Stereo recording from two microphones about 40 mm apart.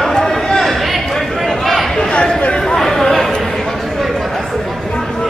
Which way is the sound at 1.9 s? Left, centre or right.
Left.